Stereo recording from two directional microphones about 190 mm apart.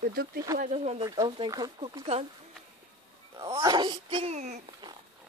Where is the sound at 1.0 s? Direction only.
20° right (ahead or behind).